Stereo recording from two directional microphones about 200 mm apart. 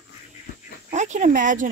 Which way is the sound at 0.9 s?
35° right (ahead or behind).